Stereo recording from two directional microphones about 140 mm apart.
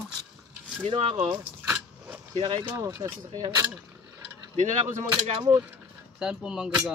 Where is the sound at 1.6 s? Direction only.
10° right (ahead or behind).